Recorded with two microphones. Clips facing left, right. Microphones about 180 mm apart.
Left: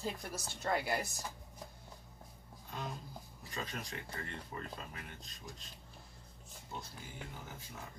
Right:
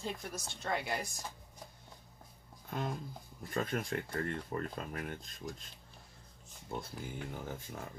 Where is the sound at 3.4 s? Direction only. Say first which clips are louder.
Right 8 dB; 50° right (ahead or behind).